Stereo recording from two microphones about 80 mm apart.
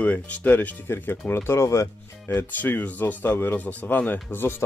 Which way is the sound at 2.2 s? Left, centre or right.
Left.